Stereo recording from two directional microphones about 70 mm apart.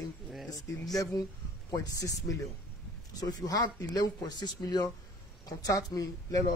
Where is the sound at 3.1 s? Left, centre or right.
Left.